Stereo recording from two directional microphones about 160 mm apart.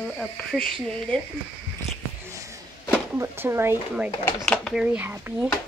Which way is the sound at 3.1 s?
15° right (ahead or behind).